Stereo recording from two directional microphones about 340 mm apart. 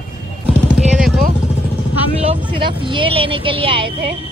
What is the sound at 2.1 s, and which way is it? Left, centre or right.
A woman's voice, centre.